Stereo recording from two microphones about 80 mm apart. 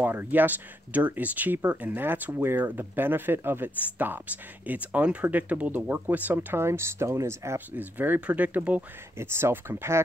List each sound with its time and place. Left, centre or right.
0.0 s speech: right
7.7 s speech: right
9.2 s speech: right